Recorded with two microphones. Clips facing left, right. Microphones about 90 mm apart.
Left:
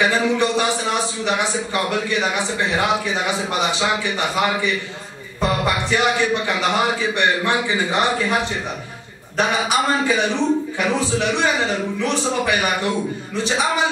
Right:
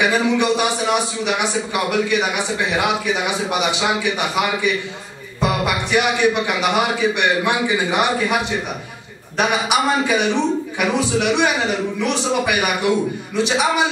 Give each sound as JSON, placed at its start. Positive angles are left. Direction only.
{"t": 0.0, "sound": "a man's voice", "side_deg": -15}
{"t": 9.4, "sound": "a man's voice", "side_deg": -15}